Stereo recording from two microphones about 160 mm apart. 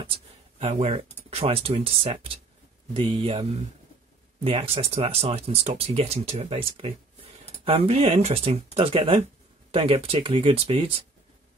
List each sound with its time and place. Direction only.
0.0 s a sound: 35° right (ahead or behind)
0.9 s speech: 35° right (ahead or behind)
4.5 s speech: 35° right (ahead or behind)